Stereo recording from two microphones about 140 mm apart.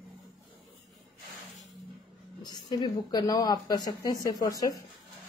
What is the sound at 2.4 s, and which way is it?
Speech, 30° left (ahead or behind).